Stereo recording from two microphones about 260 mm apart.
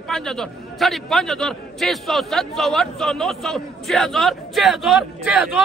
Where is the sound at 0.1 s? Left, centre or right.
Centre.